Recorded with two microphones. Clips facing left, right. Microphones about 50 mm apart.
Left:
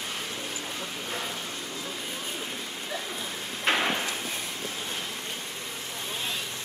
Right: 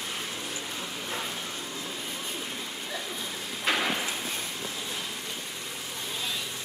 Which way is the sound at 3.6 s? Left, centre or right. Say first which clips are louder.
Left 2 dB; left.